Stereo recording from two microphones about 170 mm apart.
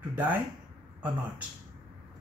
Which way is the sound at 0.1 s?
10° right (ahead or behind).